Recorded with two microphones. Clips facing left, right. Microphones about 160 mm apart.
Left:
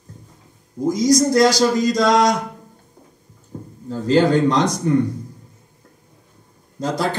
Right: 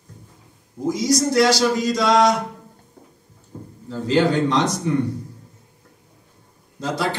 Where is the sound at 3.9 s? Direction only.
45° left (ahead or behind).